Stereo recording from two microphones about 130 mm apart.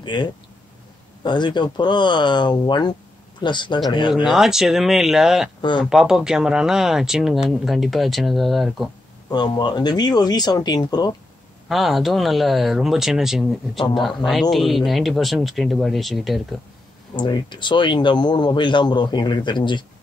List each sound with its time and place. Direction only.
0.0 s speech: 35° left (ahead or behind)
4.1 s speech: 5° right (ahead or behind)
5.6 s speech: 35° left (ahead or behind)
5.9 s speech: 5° right (ahead or behind)
9.3 s speech: 35° left (ahead or behind)
11.7 s speech: centre (ahead or behind)
17.1 s speech: 35° left (ahead or behind)